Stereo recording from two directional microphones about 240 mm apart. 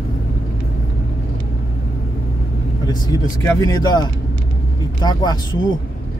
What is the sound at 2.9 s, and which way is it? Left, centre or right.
Speech, centre.